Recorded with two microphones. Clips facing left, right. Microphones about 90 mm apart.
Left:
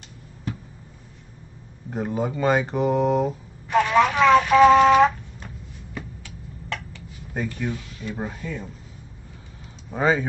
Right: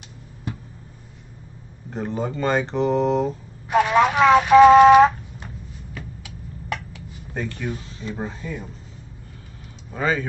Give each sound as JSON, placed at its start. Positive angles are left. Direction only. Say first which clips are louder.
{"t": 1.9, "sound": "speech", "louder": "left 1 dB", "side_deg": 5}
{"t": 3.6, "sound": "a sound", "louder": "right 1 dB", "side_deg": -15}
{"t": 6.2, "sound": "tick-tock", "louder": "right 3 dB", "side_deg": -10}
{"t": 7.3, "sound": "speech", "louder": "left 1 dB", "side_deg": 5}
{"t": 7.7, "sound": "speech", "louder": "right 1 dB", "side_deg": -30}
{"t": 9.8, "sound": "speech", "louder": "left 2 dB", "side_deg": 20}